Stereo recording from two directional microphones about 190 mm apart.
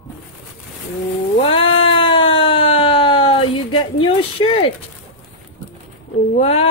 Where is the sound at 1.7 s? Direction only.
25° left (ahead or behind).